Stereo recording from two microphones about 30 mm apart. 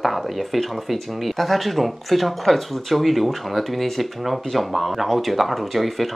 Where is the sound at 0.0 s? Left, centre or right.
Centre.